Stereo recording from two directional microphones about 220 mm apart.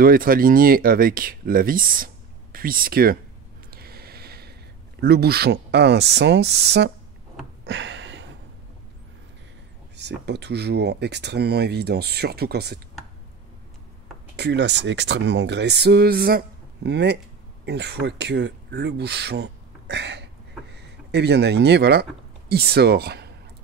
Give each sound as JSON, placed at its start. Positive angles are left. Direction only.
{"t": 0.0, "sound": "speech", "side_deg": -40}
{"t": 3.7, "sound": "a sound", "side_deg": -45}
{"t": 5.0, "sound": "speech", "side_deg": -45}
{"t": 7.6, "sound": "a sound", "side_deg": -55}
{"t": 9.9, "sound": "speech", "side_deg": -50}
{"t": 14.3, "sound": "speech", "side_deg": -50}